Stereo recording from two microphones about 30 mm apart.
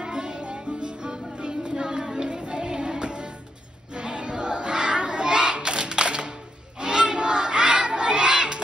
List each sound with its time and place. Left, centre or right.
0.0 s music: right
3.9 s a sound: right
6.8 s battle cry: right